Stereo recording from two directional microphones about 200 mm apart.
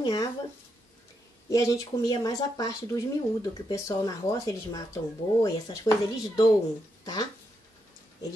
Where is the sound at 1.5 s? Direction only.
15° left (ahead or behind).